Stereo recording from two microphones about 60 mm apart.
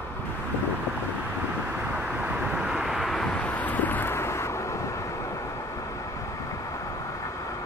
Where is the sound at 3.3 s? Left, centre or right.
Left.